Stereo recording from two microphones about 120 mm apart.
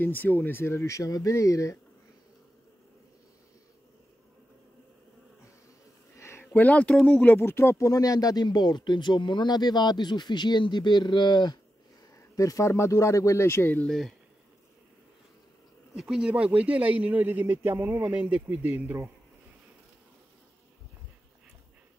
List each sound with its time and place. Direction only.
0.0 s speech: 15° left (ahead or behind)
6.1 s a sound: 20° left (ahead or behind)
6.4 s speech: 10° left (ahead or behind); by 11.5 s 35° left (ahead or behind)
12.4 s speech: 25° left (ahead or behind)
13.8 s speech: centre (ahead or behind)
15.9 s speech: 5° right (ahead or behind)